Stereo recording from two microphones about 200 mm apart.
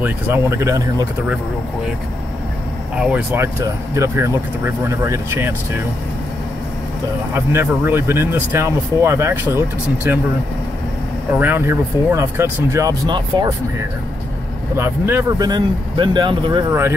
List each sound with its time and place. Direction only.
0.0 s speech: 10° right (ahead or behind)
3.0 s speech: 5° right (ahead or behind)
7.3 s speech: 10° right (ahead or behind)
11.3 s speech: 10° right (ahead or behind)
14.8 s speech: 10° right (ahead or behind)